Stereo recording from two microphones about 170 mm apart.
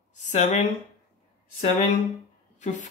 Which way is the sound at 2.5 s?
45° left (ahead or behind).